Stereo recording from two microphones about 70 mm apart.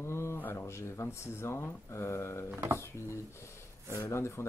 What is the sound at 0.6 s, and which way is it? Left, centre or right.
Speech, left.